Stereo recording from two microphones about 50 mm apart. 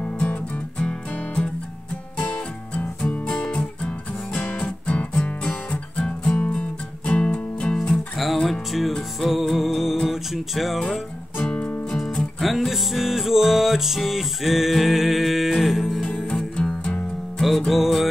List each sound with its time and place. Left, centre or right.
0.0 s music: left
2.7 s music: left
7.8 s music: centre
11.4 s music: left
12.0 s music: centre
16.5 s music: left
17.4 s music: centre